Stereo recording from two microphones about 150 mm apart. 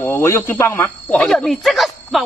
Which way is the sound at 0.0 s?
20° left (ahead or behind).